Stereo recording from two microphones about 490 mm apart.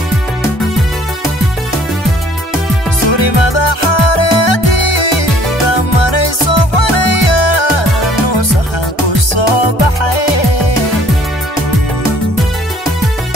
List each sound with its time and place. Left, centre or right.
3.1 s music: left
9.3 s music: left